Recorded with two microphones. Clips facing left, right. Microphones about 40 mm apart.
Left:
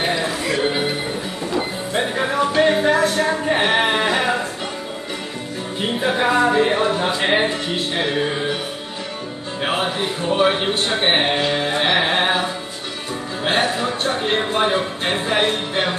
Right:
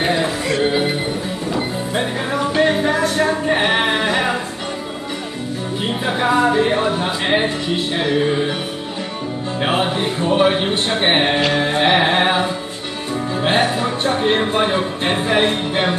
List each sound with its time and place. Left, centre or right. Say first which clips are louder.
1.5 s music: right 1 dB; centre
3.3 s a sound: right 1 dB; centre
6.1 s music: right 1 dB; centre
9.6 s music: right 2 dB; centre
10.9 s speech: right 2 dB; centre
11.8 s music: right 4 dB; centre